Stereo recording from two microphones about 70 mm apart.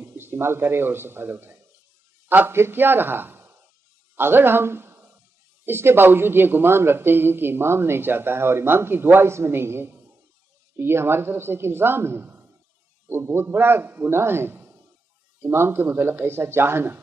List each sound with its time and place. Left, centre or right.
0.0 s a man's voice: right